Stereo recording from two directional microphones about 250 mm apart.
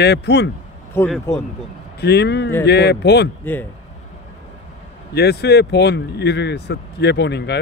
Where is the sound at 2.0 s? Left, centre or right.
Left.